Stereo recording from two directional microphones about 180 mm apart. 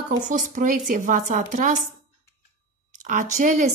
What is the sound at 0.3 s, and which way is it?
A woman's voice, 45° right (ahead or behind).